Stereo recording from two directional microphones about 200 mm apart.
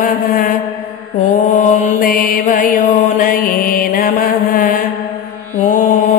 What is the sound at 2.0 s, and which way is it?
Music, 45° left (ahead or behind).